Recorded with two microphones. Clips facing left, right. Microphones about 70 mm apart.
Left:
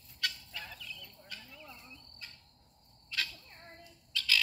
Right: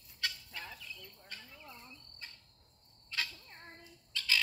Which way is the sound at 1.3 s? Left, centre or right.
Right.